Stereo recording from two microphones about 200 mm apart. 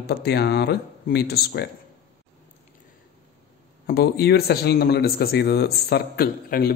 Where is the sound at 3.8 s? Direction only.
55° left (ahead or behind).